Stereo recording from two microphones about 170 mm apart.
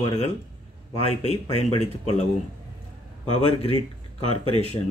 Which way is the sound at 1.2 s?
40° left (ahead or behind).